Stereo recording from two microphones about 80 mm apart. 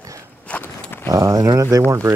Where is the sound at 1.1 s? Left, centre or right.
Right.